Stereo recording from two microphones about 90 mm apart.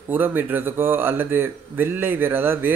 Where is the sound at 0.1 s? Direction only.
20° right (ahead or behind).